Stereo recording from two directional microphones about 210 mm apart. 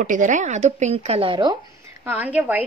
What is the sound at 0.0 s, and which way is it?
Speech, 40° right (ahead or behind).